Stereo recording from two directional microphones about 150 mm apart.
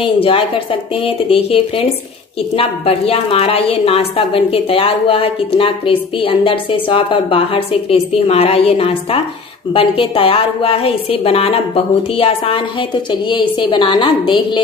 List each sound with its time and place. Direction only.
0.0 s a woman's voice: 40° left (ahead or behind)